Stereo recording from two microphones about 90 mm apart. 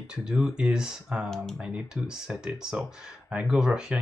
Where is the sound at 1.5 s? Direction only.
10° right (ahead or behind).